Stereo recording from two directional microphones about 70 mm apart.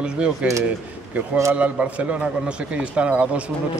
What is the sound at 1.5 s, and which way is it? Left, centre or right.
A man's voice, right.